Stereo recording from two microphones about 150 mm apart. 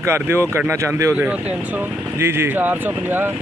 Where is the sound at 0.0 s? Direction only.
15° right (ahead or behind).